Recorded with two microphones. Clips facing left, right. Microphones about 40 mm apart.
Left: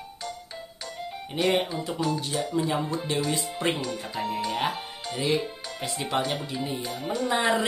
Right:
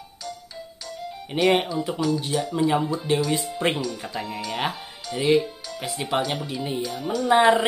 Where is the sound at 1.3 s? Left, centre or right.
Right.